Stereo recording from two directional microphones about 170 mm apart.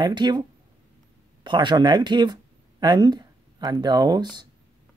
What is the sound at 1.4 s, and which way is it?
Speech, 25° right (ahead or behind).